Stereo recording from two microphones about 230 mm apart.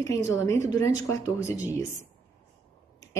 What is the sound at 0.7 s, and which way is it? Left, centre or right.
Speech, centre.